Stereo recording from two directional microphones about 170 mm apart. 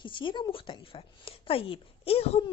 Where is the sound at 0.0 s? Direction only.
30° left (ahead or behind).